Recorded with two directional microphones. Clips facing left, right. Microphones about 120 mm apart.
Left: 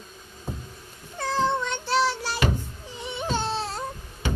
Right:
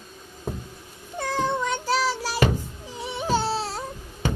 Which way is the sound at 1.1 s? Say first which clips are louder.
Left 1 dB; 10° right (ahead or behind).